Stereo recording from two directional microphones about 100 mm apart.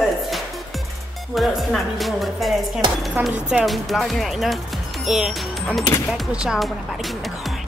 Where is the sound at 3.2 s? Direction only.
20° right (ahead or behind).